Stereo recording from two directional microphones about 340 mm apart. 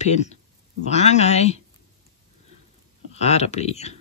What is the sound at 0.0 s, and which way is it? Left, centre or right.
Speech, centre.